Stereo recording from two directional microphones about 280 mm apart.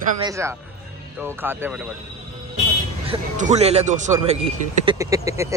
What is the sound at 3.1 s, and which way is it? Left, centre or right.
A man's voice, right.